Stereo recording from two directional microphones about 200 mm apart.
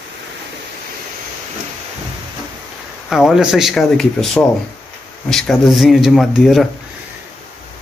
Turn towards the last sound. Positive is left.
turn(degrees=0)  # may be behind; listen again after turning